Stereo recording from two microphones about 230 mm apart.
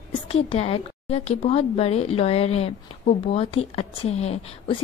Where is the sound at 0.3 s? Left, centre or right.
Left.